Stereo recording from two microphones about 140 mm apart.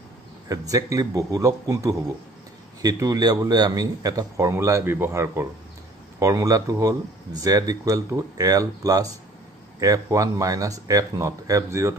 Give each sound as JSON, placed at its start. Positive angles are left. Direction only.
{"t": 0.5, "sound": "a man's voice", "side_deg": -25}